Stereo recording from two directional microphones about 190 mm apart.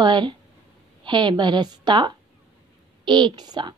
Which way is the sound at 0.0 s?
25° right (ahead or behind).